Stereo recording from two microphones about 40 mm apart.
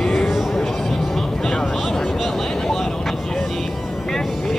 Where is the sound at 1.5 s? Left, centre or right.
Centre.